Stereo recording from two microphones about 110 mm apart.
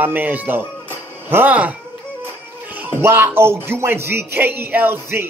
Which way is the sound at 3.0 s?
20° right (ahead or behind).